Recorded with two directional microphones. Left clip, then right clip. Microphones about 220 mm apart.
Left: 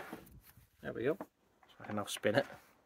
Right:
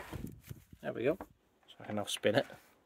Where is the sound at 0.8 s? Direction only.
25° right (ahead or behind).